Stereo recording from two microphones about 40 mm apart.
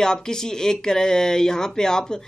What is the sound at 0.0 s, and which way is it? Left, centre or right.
Speech, centre.